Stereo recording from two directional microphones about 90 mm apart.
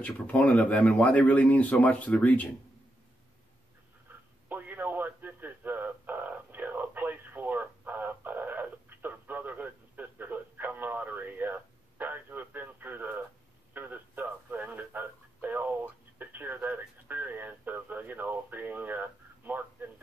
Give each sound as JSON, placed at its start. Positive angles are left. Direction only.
{"t": 0.0, "sound": "speech", "side_deg": 15}
{"t": 4.5, "sound": "radio", "side_deg": -20}